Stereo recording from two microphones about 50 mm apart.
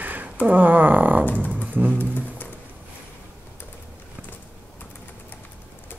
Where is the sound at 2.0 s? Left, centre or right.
Left.